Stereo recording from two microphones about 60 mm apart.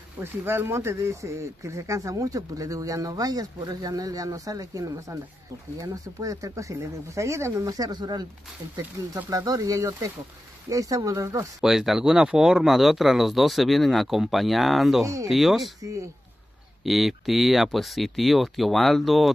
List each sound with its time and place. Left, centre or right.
0.2 s speech: right
5.8 s speech: right
11.6 s speech: centre
15.8 s speech: right
16.8 s speech: centre